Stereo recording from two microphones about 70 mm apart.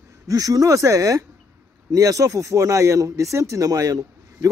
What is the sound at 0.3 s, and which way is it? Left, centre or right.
Speech, right.